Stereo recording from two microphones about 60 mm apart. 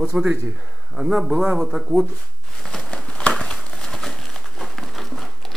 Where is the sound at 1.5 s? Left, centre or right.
Centre.